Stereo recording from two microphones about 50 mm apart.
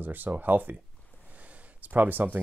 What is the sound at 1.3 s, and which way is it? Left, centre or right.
Gasp, right.